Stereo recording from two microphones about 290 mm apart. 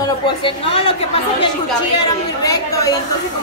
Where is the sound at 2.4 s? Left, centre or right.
Centre.